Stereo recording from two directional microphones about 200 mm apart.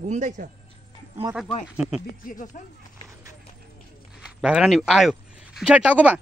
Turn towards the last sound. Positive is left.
turn(degrees=-5)  # may be behind; listen again after turning